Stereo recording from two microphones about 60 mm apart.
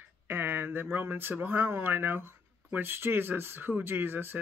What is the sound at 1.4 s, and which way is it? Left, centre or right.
Speech, right.